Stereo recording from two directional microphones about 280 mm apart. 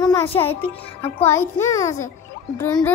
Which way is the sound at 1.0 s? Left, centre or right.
Centre.